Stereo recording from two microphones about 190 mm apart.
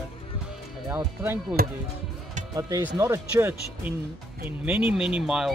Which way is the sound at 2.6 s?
15° right (ahead or behind).